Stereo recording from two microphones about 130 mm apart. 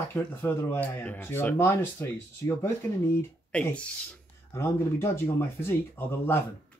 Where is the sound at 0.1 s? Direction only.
15° left (ahead or behind).